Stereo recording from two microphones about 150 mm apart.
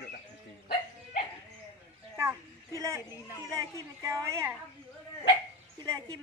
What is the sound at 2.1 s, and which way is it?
A woman's voice, 20° right (ahead or behind).